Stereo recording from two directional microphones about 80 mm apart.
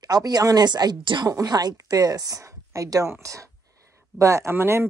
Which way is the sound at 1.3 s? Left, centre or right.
Right.